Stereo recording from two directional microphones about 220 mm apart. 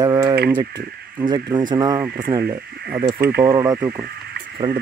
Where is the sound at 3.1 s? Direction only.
45° right (ahead or behind).